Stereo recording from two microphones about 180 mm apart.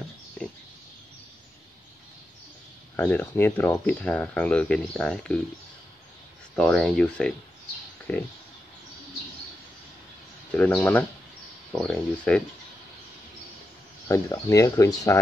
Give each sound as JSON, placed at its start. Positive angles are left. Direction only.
{"t": 3.0, "sound": "speech", "side_deg": 10}
{"t": 6.5, "sound": "speech", "side_deg": 5}
{"t": 10.5, "sound": "speech", "side_deg": 10}
{"t": 14.1, "sound": "speech", "side_deg": 20}